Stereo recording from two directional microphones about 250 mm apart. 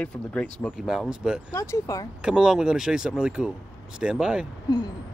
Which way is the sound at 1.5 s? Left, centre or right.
Centre.